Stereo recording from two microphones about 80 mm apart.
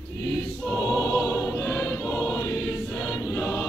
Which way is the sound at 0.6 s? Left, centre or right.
Centre.